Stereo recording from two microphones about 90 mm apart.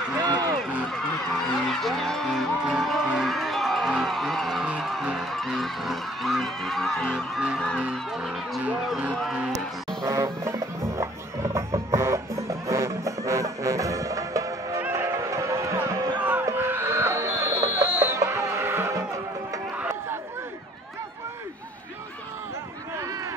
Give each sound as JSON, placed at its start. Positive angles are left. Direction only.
{"t": 0.2, "sound": "run", "side_deg": -45}
{"t": 1.7, "sound": "music", "side_deg": 0}
{"t": 10.0, "sound": "music", "side_deg": -35}
{"t": 14.8, "sound": "music", "side_deg": -25}
{"t": 16.2, "sound": "music", "side_deg": -20}